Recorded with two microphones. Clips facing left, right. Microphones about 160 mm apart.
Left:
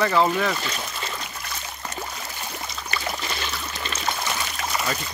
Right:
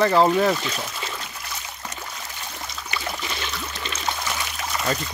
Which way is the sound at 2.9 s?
15° right (ahead or behind).